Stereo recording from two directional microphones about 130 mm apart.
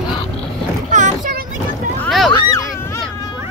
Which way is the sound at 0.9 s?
75° right (ahead or behind).